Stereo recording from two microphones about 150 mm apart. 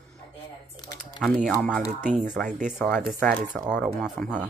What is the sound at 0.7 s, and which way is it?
Typing, 25° left (ahead or behind).